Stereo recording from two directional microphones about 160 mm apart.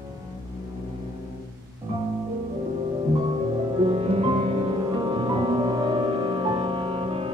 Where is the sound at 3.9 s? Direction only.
35° right (ahead or behind).